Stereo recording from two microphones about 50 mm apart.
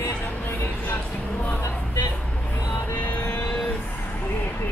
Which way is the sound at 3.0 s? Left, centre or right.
Left.